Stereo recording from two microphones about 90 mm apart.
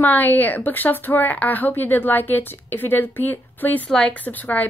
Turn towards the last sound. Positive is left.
turn(degrees=20)  # may be behind; listen again after turning